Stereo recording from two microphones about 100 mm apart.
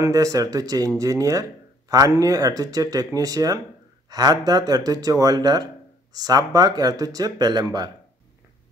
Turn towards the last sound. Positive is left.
turn(degrees=-45)  # may be behind; listen again after turning